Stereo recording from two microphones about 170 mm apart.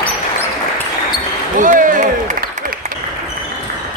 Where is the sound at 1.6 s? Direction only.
50° right (ahead or behind).